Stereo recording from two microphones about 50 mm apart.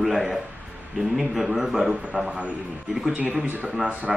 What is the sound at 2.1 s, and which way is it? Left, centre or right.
Speech, right.